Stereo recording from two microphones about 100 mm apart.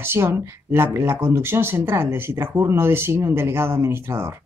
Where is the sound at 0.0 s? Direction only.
20° right (ahead or behind).